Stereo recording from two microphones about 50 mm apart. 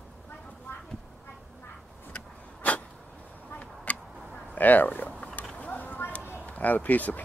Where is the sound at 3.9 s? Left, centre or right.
Left.